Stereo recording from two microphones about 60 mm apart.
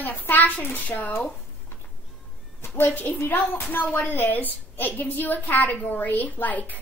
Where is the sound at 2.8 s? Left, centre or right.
Left.